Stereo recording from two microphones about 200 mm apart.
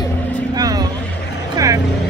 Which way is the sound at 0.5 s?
20° right (ahead or behind).